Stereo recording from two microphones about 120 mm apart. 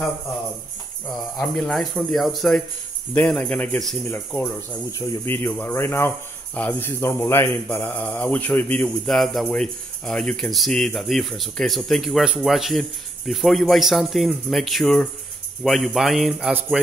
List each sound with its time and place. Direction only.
1.4 s a man's voice: 5° left (ahead or behind)